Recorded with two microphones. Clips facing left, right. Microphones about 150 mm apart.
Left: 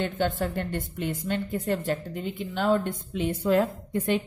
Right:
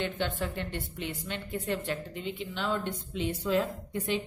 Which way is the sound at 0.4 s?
45° left (ahead or behind).